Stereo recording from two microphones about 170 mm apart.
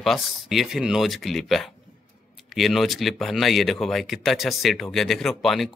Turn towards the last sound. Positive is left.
turn(degrees=0)  # may be behind; listen again after turning